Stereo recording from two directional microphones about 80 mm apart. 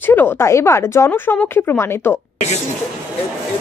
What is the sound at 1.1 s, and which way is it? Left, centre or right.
Speech, left.